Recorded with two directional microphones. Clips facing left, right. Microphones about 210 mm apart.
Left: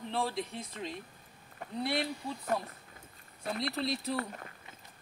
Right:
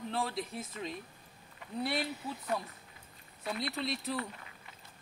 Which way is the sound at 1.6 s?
50° left (ahead or behind).